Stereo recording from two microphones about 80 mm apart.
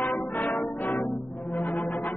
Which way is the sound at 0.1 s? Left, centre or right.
Left.